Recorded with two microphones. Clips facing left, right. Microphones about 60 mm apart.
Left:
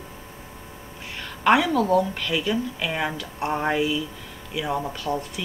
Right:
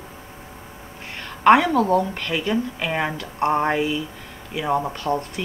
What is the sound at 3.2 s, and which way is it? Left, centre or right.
Speech, right.